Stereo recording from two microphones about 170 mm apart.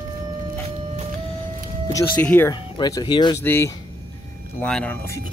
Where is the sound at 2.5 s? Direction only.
25° left (ahead or behind).